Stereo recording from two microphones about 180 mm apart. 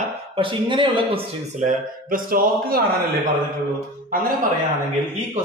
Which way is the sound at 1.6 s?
50° right (ahead or behind).